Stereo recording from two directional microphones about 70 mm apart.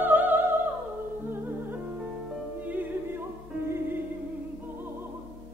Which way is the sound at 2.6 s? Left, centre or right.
Right.